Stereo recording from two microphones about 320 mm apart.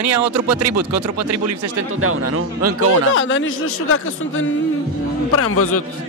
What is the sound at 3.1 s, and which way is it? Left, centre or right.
A man's voice, left.